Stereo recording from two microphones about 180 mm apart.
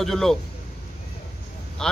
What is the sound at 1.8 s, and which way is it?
Speech, 5° left (ahead or behind).